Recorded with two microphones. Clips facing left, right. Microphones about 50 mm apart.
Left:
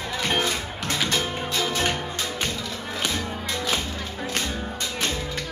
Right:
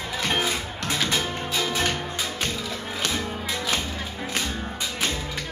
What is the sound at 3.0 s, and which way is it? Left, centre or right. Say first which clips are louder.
Music: right 1 dB; centre.